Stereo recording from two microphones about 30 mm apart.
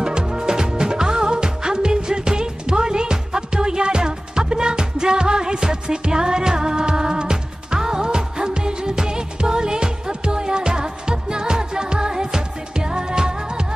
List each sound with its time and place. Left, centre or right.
0.0 s music: right